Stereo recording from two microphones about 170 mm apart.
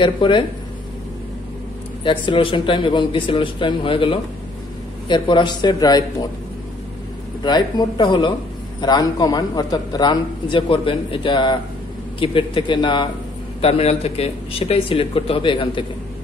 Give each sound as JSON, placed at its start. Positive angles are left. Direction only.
{"t": 0.0, "sound": "a man's voice", "side_deg": 30}
{"t": 2.0, "sound": "a man's voice", "side_deg": 30}
{"t": 7.4, "sound": "a man's voice", "side_deg": 25}